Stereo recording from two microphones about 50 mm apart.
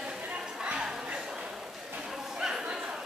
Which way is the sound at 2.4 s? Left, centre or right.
Centre.